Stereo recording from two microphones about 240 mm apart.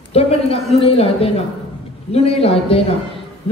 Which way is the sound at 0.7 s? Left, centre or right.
Left.